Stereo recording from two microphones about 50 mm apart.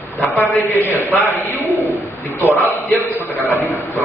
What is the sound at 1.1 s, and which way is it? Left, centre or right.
A man's voice, left.